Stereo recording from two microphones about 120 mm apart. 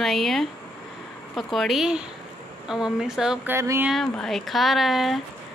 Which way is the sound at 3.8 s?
5° left (ahead or behind).